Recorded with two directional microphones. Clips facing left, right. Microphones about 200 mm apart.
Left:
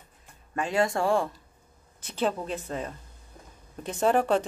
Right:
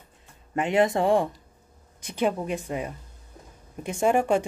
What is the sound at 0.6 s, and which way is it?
Speech, 20° right (ahead or behind).